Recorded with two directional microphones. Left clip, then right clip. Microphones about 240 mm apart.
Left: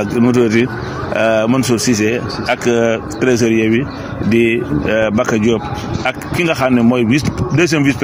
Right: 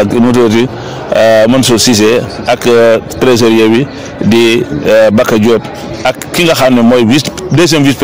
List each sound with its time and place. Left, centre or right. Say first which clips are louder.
0.0 s a man's voice: right 6 dB; right